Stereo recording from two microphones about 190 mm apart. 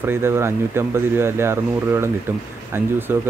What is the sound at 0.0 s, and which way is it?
Speech, 10° right (ahead or behind).